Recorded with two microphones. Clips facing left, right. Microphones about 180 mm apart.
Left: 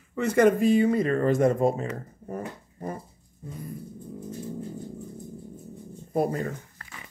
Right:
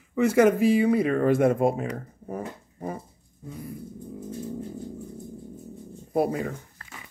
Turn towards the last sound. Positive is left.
turn(degrees=-5)  # may be behind; listen again after turning